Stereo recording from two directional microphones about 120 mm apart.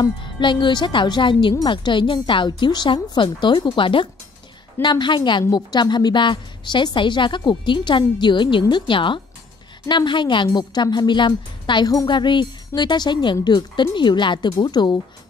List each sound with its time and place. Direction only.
0.0 s a woman's voice: 40° left (ahead or behind)